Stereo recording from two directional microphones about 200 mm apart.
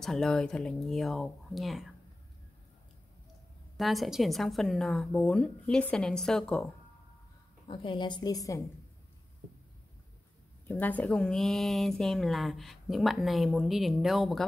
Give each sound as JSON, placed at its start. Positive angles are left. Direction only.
{"t": 0.0, "sound": "a woman's voice", "side_deg": 0}
{"t": 3.7, "sound": "a woman's voice", "side_deg": 0}
{"t": 7.6, "sound": "a woman's voice", "side_deg": 25}
{"t": 10.7, "sound": "a woman's voice", "side_deg": 10}